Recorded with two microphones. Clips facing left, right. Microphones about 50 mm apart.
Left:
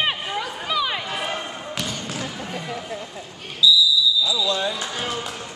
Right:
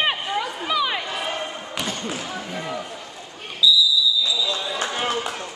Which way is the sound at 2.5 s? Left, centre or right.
Right.